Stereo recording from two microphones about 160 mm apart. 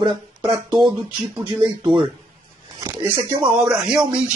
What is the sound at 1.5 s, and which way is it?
Speech, 25° right (ahead or behind).